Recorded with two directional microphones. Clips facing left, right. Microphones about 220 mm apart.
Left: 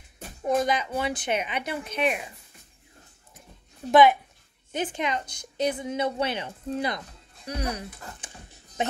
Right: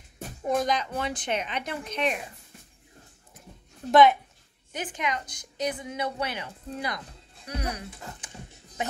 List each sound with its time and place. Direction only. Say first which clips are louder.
0.4 s speech: left 2 dB; centre (ahead or behind)
3.9 s a woman's voice: left 1 dB; 5° left (ahead or behind)
4.7 s a woman's voice: left 3 dB; 30° left (ahead or behind)